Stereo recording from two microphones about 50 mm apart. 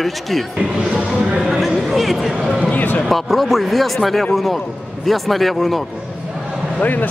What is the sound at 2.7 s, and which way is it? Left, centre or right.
Speech, left.